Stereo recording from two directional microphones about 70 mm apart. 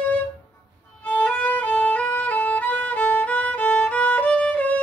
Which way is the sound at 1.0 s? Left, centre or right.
Left.